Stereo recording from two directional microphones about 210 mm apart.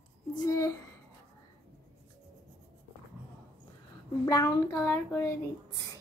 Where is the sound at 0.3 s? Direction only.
20° left (ahead or behind).